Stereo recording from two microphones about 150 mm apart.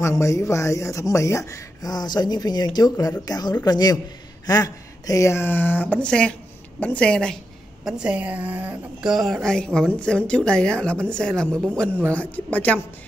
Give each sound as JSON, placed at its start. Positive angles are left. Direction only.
{"t": 0.0, "sound": "speech", "side_deg": 20}
{"t": 7.8, "sound": "a woman's voice", "side_deg": -5}